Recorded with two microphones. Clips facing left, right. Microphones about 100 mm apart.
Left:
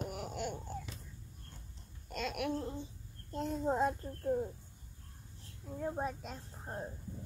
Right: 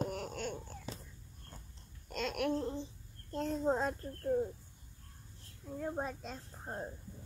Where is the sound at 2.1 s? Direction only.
5° left (ahead or behind).